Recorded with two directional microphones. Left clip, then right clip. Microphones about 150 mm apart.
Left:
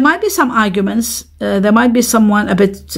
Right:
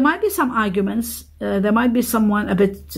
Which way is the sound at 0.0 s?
30° left (ahead or behind).